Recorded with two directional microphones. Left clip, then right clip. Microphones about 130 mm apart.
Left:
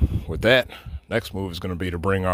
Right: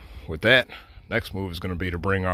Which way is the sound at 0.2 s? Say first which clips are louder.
Left 1 dB; 15° left (ahead or behind).